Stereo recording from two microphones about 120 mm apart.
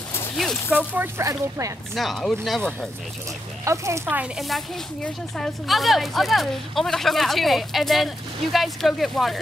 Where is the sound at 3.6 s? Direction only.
25° right (ahead or behind).